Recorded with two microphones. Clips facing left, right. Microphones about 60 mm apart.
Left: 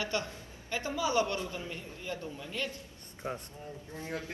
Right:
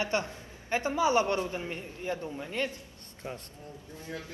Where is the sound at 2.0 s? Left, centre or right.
Right.